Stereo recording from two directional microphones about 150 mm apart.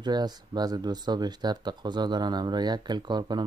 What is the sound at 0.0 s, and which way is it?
Speech, 25° right (ahead or behind).